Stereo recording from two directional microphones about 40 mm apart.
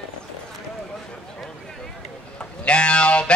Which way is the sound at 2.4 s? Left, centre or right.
Left.